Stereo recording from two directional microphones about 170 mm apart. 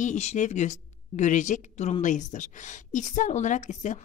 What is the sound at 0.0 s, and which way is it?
Speech, 40° left (ahead or behind).